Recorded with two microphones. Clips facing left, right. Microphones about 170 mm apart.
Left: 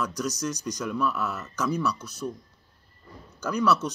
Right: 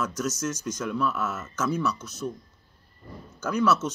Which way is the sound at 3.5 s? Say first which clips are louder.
Right 1 dB; 5° right (ahead or behind).